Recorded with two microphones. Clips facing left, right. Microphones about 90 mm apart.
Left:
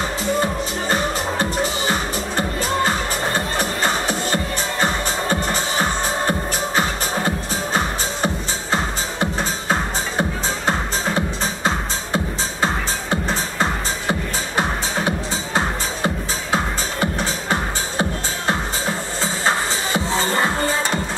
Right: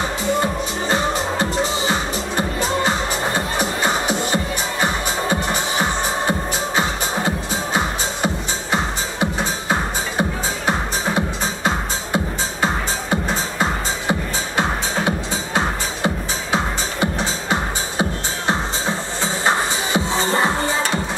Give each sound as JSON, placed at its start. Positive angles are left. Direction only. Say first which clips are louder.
{"t": 0.4, "sound": "music", "louder": "even", "side_deg": -20}